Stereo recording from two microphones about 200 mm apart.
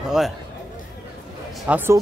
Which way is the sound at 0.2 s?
Centre (ahead or behind).